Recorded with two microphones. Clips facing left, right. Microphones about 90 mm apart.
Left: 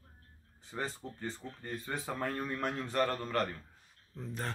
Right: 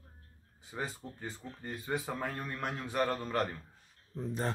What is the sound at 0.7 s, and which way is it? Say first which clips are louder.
Speech: left 1 dB; 10° right (ahead or behind).